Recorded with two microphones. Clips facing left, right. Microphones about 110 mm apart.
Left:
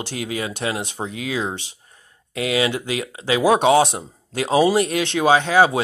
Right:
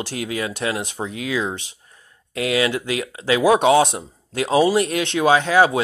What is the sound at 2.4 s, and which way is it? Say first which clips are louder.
Speech: right 1 dB; 25° left (ahead or behind).